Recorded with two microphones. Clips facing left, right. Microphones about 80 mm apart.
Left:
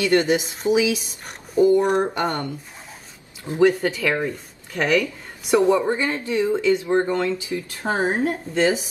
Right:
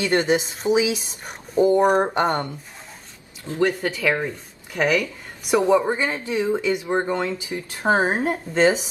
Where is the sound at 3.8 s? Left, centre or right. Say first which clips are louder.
Left 2 dB; centre.